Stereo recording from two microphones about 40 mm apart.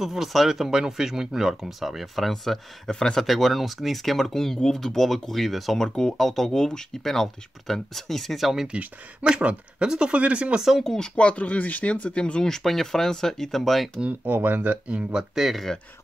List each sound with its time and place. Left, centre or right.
0.0 s speech: centre
2.9 s speech: centre
3.3 s speech: centre
5.8 s speech: centre
9.4 s speech: right
11.0 s speech: left
12.4 s speech: centre
14.2 s speech: right
15.1 s speech: centre